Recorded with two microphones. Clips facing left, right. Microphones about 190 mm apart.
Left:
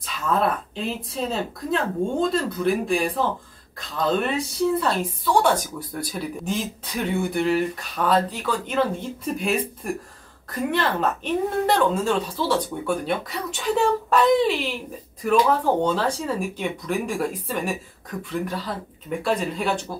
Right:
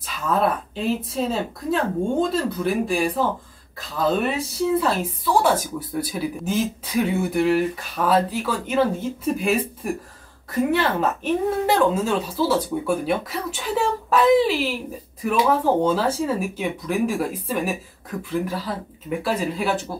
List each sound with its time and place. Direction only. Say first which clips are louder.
0.0 s speech: right 1 dB; centre (ahead or behind)